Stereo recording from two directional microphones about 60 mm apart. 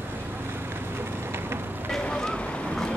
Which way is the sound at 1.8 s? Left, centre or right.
Centre.